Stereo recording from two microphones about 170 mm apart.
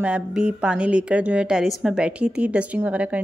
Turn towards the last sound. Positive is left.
turn(degrees=-10)  # may be behind; listen again after turning